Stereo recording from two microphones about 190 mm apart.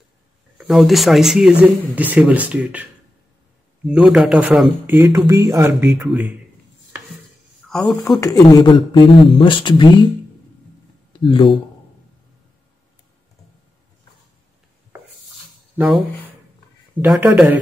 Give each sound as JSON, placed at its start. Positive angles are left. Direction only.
{"t": 0.6, "sound": "speech", "side_deg": 0}
{"t": 7.7, "sound": "a man's voice", "side_deg": 10}
{"t": 11.1, "sound": "speech", "side_deg": 25}
{"t": 17.0, "sound": "speech", "side_deg": -10}